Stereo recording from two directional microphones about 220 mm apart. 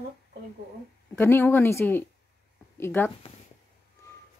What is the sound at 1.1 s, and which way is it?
Speech, 10° left (ahead or behind).